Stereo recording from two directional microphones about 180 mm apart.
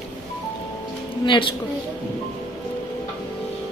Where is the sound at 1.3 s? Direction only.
30° left (ahead or behind).